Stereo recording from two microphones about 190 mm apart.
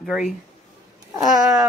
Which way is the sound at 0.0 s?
Centre (ahead or behind).